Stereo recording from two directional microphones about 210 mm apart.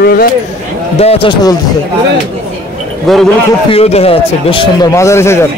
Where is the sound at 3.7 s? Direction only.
30° left (ahead or behind).